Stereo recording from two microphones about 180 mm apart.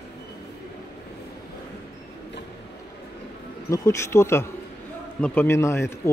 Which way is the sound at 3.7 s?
15° left (ahead or behind).